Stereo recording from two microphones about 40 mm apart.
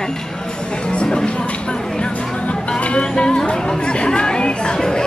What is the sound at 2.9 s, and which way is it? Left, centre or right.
Speech, left.